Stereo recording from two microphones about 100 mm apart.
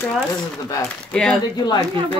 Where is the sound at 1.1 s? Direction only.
5° left (ahead or behind).